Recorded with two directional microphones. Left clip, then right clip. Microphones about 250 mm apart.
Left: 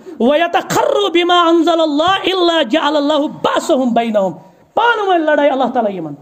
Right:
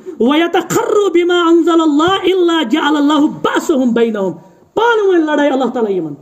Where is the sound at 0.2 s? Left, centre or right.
Centre.